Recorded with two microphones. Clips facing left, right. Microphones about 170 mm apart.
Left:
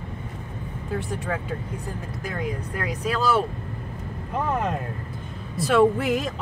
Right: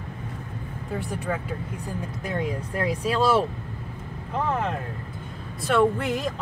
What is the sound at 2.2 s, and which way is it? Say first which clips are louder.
Speech: right 1 dB; 25° right (ahead or behind).